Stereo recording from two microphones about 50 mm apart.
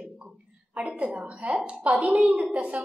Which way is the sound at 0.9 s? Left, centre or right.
Right.